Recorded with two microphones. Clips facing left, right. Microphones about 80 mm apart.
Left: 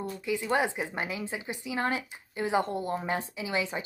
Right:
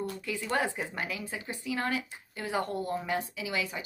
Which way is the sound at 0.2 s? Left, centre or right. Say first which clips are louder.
Left 5 dB; centre.